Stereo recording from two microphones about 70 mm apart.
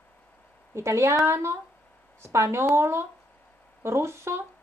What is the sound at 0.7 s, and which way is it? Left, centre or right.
A woman's voice, right.